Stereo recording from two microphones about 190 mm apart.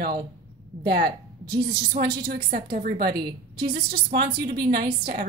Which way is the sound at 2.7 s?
55° right (ahead or behind).